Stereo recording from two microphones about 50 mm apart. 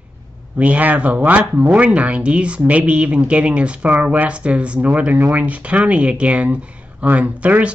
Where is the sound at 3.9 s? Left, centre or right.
Right.